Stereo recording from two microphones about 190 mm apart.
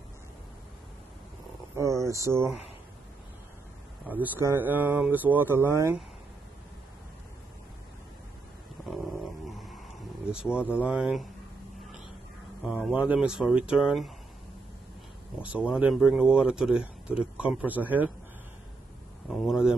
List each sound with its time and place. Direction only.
1.8 s speech: 15° right (ahead or behind)
4.1 s speech: 10° right (ahead or behind)
8.8 s a sound: centre (ahead or behind)
12.8 s a man's voice: 5° right (ahead or behind)
15.5 s a man's voice: 5° right (ahead or behind)
19.4 s a man's voice: 5° right (ahead or behind)